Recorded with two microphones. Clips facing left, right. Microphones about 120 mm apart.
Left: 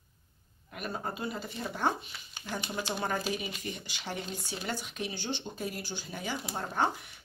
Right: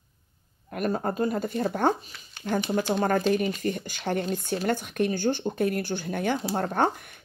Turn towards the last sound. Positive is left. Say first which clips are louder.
# right 6 dB
turn(degrees=-50)  # may be behind; listen again after turning